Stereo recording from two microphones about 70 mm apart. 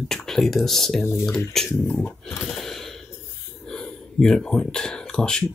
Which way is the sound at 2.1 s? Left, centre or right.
Left.